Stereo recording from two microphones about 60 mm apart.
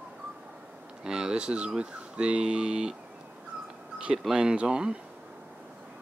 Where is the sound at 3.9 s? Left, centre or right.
Centre.